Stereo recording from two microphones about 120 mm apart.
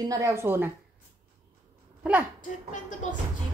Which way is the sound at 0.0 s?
30° right (ahead or behind).